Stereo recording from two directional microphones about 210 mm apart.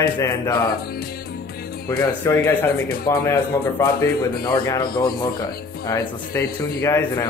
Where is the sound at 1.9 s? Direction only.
10° left (ahead or behind).